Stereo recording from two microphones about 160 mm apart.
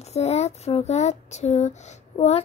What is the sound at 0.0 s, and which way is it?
Speech, 40° left (ahead or behind).